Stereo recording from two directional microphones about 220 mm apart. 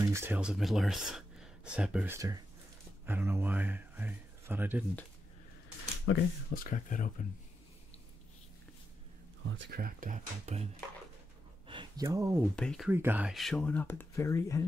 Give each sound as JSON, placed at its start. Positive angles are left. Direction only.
{"t": 0.0, "sound": "speech", "side_deg": -10}
{"t": 6.1, "sound": "speech", "side_deg": 65}
{"t": 6.5, "sound": "speech", "side_deg": 40}
{"t": 9.5, "sound": "speech", "side_deg": -50}
{"t": 11.6, "sound": "a sound", "side_deg": -20}
{"t": 12.5, "sound": "speech", "side_deg": 5}
{"t": 12.9, "sound": "speech", "side_deg": -10}